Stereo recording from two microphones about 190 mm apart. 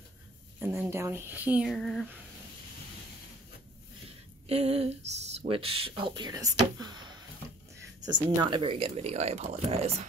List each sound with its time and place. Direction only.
0.6 s speech: 10° right (ahead or behind)
4.5 s speech: 35° right (ahead or behind)